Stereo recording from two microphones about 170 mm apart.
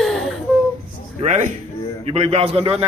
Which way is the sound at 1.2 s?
45° right (ahead or behind).